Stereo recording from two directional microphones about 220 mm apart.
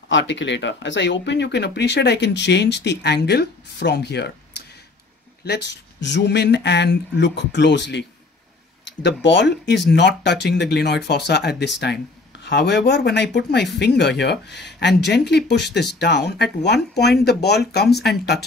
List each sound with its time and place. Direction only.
0.1 s speech: 55° left (ahead or behind)
9.0 s speech: 55° left (ahead or behind)